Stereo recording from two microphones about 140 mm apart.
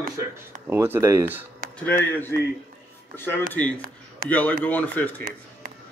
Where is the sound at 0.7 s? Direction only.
15° right (ahead or behind).